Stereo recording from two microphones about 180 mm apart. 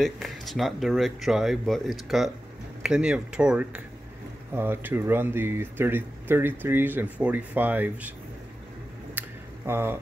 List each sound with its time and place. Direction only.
0.0 s speech: centre (ahead or behind)
9.2 s a sound: 10° right (ahead or behind)
9.7 s speech: 15° right (ahead or behind)